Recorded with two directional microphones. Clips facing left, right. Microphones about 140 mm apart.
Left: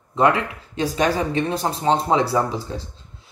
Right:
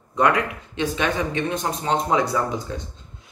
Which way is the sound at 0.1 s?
25° left (ahead or behind).